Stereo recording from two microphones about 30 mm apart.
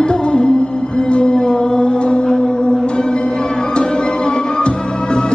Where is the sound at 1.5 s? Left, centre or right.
Centre.